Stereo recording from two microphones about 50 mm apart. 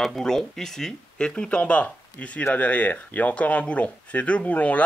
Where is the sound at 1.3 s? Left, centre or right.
Left.